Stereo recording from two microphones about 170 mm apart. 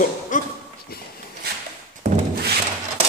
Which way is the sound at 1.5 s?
70° right (ahead or behind).